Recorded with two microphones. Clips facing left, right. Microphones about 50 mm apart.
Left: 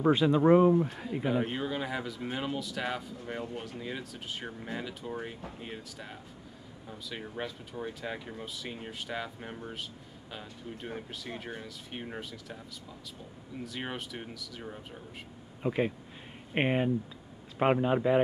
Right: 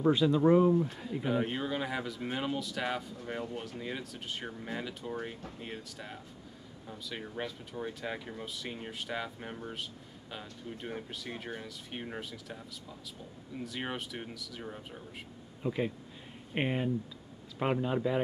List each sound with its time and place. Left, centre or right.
0.0 s speech: left
0.8 s speech: centre
1.2 s speech: centre
13.7 s speech: centre
15.6 s speech: left